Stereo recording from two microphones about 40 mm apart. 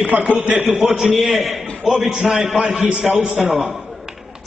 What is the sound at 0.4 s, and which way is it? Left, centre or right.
Speech, right.